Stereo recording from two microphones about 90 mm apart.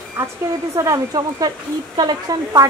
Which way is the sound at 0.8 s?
40° right (ahead or behind).